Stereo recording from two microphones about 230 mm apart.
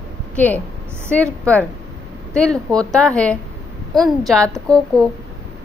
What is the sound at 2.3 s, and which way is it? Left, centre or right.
A woman's voice, centre.